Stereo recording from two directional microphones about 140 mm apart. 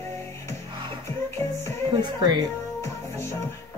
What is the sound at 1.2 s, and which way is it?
Music, 20° left (ahead or behind).